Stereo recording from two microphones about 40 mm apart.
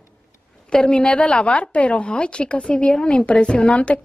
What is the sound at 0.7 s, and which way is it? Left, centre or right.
A woman's voice, centre.